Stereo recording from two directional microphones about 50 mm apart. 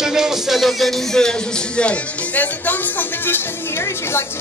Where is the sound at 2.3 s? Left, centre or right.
Left.